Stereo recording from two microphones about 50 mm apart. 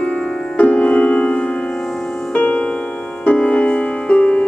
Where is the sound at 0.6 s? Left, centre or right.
Left.